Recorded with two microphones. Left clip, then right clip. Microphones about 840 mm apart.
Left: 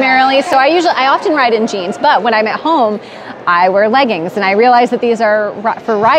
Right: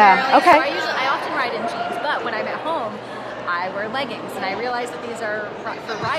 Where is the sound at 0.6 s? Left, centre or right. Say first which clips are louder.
Left 10 dB; left.